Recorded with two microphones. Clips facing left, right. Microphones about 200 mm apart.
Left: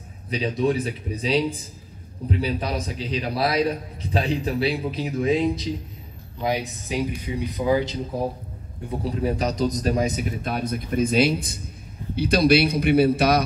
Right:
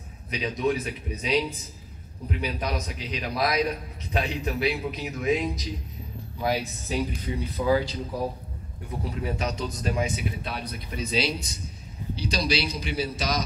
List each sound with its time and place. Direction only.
0.3 s a man's voice: 30° left (ahead or behind)
6.4 s speech: 20° left (ahead or behind)
9.2 s a man's voice: 35° left (ahead or behind); by 13.4 s 60° left (ahead or behind)